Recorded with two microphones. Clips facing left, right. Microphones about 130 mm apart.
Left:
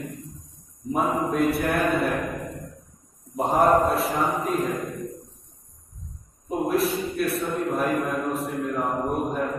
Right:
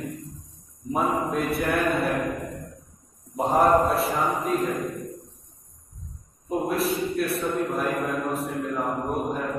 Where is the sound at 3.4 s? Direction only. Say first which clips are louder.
Even; centre (ahead or behind).